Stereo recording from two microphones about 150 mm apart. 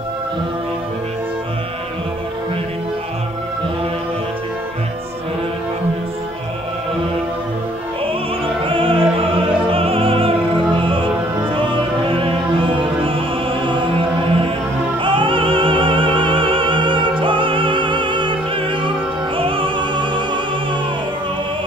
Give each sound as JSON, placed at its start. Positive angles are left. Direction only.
{"t": 8.6, "sound": "opera", "side_deg": -35}
{"t": 11.5, "sound": "music", "side_deg": -35}
{"t": 15.0, "sound": "opera", "side_deg": -35}
{"t": 17.2, "sound": "music", "side_deg": -35}